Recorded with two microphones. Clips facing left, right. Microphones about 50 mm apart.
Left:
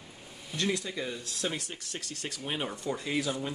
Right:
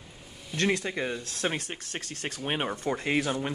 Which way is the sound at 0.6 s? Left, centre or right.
Right.